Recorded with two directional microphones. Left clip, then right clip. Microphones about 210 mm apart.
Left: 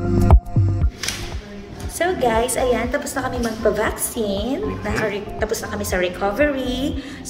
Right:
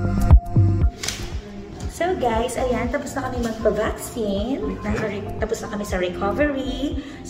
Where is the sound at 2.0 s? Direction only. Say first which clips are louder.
Left 3 dB; 15° right (ahead or behind).